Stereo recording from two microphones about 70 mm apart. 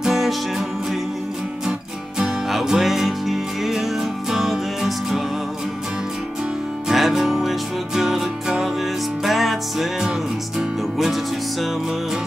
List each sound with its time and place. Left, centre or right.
0.0 s music: centre
2.1 s music: centre
6.9 s music: centre